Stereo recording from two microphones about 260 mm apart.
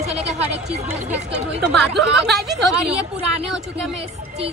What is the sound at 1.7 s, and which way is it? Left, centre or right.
Speech, centre.